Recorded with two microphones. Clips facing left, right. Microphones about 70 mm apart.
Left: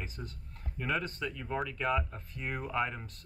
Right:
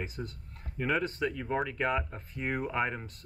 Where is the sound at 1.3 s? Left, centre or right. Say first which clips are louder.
Right 4 dB; right.